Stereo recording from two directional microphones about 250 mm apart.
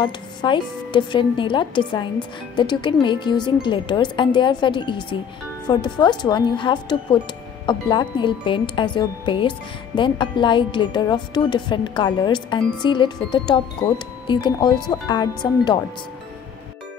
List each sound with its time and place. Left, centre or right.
0.0 s speech: centre